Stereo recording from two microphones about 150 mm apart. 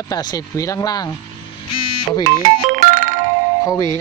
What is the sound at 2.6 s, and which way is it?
Music, 55° right (ahead or behind).